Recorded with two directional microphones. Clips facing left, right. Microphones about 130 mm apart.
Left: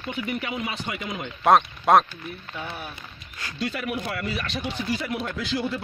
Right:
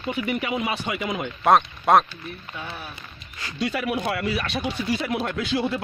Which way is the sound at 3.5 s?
75° right (ahead or behind).